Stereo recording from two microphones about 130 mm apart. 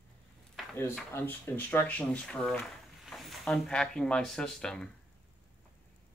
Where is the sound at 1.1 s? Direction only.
15° left (ahead or behind).